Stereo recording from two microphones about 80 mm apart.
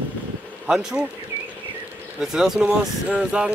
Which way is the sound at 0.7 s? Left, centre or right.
Centre.